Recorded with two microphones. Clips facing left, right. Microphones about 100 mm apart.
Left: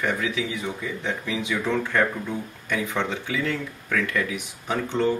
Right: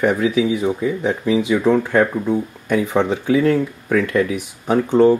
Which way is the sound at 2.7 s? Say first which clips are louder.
Right 9 dB; 40° right (ahead or behind).